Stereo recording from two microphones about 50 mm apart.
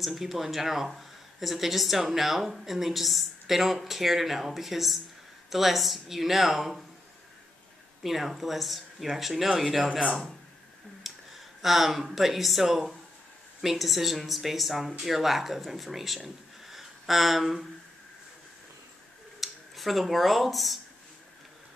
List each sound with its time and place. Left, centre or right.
0.0 s speech: centre
8.0 s speech: centre
9.8 s speech: centre
11.1 s speech: centre
19.4 s speech: centre